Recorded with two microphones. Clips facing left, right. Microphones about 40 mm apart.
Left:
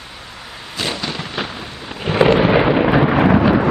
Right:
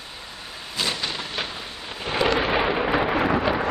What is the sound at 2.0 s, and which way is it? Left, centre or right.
Thunder, left.